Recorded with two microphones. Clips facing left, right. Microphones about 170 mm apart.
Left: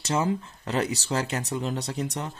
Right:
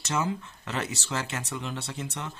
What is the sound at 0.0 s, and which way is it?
Speech, 35° left (ahead or behind).